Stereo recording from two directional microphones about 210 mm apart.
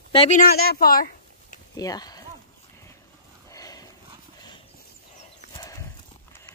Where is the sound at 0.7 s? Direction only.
45° left (ahead or behind).